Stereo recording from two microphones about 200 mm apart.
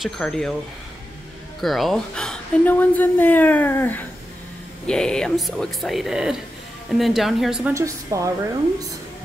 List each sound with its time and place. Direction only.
0.0 s speech: centre (ahead or behind)
1.6 s a woman's voice: centre (ahead or behind)
7.7 s a woman's voice: 15° right (ahead or behind)